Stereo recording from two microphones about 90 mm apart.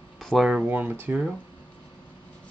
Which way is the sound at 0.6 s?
20° right (ahead or behind).